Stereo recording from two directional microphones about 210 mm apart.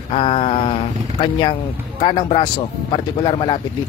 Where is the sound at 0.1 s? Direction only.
25° left (ahead or behind).